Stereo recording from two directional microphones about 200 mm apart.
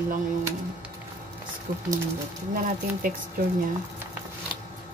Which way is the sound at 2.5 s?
45° right (ahead or behind).